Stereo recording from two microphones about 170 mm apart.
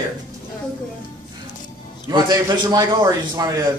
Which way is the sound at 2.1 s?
25° right (ahead or behind).